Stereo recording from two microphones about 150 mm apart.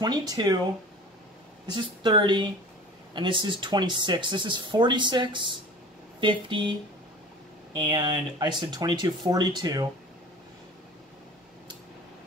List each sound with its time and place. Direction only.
0.0 s speech: 25° right (ahead or behind)
1.8 s speech: 30° right (ahead or behind)